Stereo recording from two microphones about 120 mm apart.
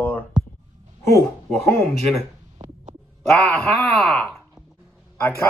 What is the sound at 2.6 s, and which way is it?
Heart sounds, 75° right (ahead or behind).